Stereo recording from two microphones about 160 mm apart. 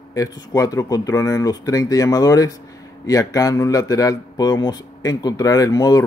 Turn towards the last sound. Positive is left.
turn(degrees=25)  # may be behind; listen again after turning